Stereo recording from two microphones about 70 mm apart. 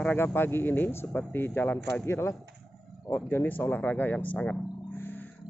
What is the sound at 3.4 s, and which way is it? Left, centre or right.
Speech, left.